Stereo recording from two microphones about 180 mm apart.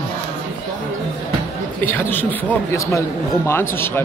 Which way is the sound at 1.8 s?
10° left (ahead or behind).